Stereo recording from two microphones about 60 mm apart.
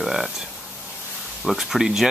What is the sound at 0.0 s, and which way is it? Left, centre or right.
Speech, centre.